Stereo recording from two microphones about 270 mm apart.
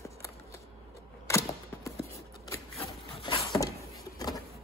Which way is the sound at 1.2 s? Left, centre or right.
Centre.